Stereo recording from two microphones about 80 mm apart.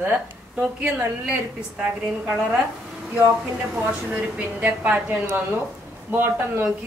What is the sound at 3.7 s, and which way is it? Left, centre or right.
A woman's voice, centre.